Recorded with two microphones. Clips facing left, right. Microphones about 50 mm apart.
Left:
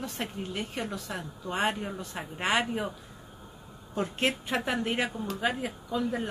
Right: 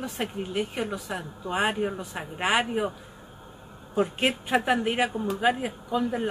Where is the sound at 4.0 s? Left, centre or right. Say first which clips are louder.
Right 4 dB; centre.